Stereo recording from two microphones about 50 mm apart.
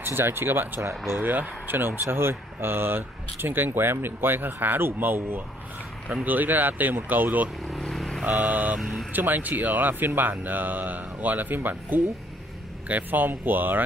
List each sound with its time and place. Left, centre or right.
0.0 s speech: right
1.2 s speech: right
7.9 s vehicle: centre
8.3 s speech: right